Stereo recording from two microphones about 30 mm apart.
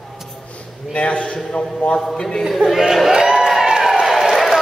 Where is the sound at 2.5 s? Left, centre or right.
Centre.